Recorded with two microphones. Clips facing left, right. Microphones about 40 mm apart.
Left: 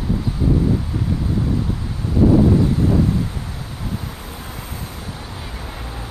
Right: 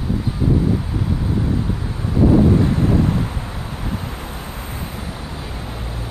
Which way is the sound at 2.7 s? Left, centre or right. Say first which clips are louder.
Even; right.